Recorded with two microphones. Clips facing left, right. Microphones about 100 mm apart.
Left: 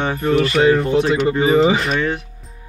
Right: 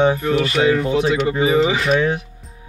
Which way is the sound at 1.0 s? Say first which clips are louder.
Left 1 dB; 10° right (ahead or behind).